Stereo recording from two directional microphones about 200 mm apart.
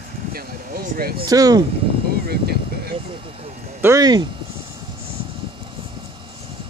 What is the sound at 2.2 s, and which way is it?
Speech, 50° right (ahead or behind).